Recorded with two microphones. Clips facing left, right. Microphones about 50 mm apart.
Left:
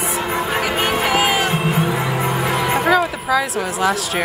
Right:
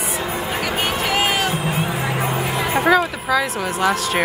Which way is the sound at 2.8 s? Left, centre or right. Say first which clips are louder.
Even; centre.